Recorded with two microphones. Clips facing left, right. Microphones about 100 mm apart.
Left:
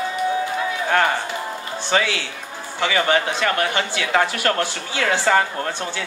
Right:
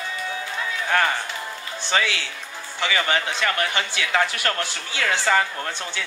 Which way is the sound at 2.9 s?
25° left (ahead or behind).